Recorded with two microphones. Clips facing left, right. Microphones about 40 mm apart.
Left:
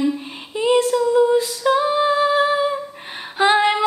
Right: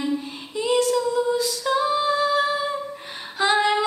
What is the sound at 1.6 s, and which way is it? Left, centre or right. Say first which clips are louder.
Singing: left 4 dB; left.